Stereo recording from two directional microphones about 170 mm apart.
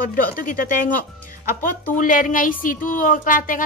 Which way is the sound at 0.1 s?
55° left (ahead or behind).